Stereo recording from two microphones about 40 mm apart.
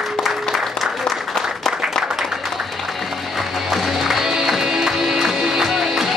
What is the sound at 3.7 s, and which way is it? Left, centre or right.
Music, centre.